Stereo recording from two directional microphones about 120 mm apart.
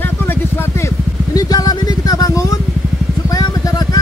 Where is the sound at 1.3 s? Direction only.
30° left (ahead or behind).